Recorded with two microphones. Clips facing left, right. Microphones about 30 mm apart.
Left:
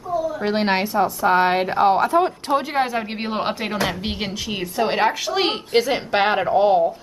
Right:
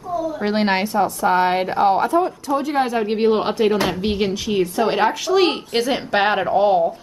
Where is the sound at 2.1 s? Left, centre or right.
Left.